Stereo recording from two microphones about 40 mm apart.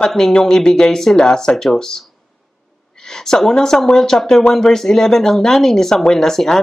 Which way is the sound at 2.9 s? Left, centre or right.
Centre.